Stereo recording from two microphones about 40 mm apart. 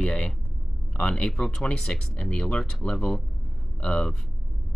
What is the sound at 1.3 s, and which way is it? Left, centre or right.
Speech, centre.